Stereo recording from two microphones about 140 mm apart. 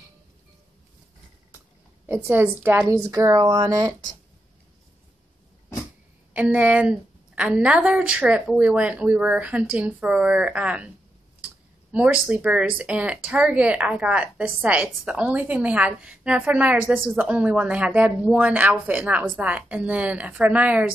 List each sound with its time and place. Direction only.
2.0 s a woman's voice: 15° right (ahead or behind)
6.3 s speech: 10° right (ahead or behind)
11.9 s speech: 10° right (ahead or behind)